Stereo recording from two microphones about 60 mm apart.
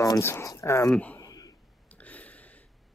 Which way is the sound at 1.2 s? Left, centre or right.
Left.